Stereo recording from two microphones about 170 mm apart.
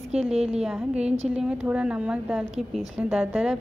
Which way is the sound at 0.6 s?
5° right (ahead or behind).